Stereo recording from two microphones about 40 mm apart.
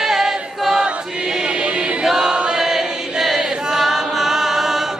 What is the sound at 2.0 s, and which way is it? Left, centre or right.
Choir, centre.